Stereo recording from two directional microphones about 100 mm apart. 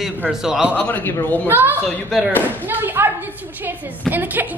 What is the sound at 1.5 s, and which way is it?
Speech, 20° right (ahead or behind).